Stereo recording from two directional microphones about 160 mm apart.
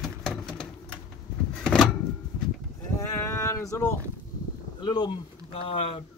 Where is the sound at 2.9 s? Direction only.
15° left (ahead or behind).